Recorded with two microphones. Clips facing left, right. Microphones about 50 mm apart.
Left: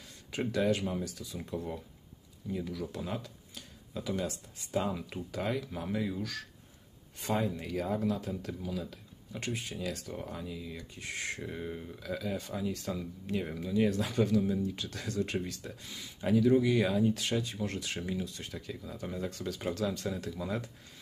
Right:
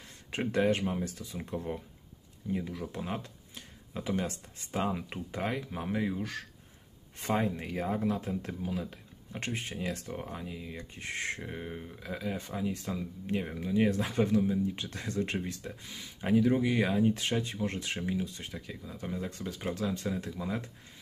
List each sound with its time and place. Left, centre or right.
0.3 s speech: right
14.4 s speech: centre
14.8 s speech: right
15.3 s speech: centre
18.0 s speech: centre